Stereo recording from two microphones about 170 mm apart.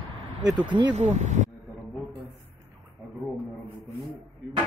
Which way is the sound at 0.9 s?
45° right (ahead or behind).